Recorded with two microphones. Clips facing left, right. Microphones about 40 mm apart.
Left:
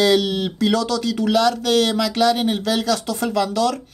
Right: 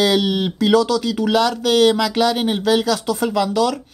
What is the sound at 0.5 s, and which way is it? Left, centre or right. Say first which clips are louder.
Speech: right 5 dB; centre.